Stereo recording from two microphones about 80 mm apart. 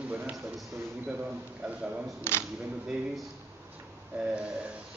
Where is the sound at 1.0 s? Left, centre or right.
Centre.